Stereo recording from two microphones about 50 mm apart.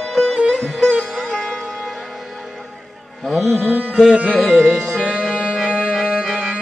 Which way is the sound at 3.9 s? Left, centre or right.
Centre.